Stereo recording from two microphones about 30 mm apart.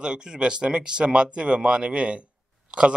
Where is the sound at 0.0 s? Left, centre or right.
Right.